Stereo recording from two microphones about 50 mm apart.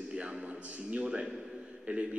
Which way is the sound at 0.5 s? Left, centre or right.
Right.